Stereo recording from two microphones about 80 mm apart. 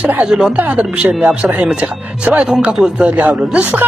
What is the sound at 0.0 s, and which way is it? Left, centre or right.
Speech, centre.